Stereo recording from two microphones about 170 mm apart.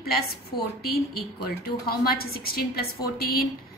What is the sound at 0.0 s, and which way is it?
A woman's voice, 65° left (ahead or behind).